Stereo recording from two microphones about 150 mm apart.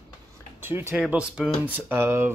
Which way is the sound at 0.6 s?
15° right (ahead or behind).